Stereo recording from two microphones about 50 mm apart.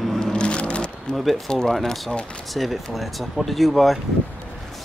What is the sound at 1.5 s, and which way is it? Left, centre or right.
Speech, centre.